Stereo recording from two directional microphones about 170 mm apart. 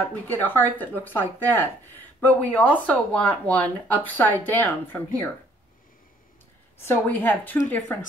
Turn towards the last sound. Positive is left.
turn(degrees=10)  # may be behind; listen again after turning